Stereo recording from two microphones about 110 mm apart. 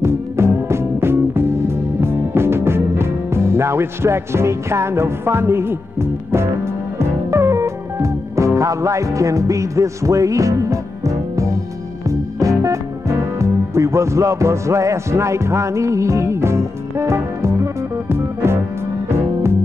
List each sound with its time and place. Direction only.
0.0 s music: 25° right (ahead or behind)